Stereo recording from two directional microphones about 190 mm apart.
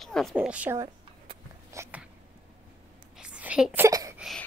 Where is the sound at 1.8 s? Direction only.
15° right (ahead or behind).